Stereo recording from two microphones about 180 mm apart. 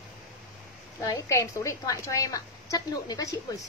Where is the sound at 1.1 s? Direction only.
15° left (ahead or behind).